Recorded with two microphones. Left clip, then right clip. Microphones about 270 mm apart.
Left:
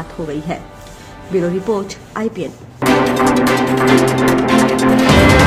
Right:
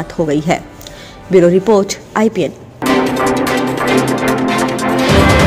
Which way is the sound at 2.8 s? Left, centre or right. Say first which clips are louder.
Even; centre.